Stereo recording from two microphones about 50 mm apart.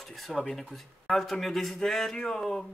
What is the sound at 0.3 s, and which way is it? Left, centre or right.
Speech, centre.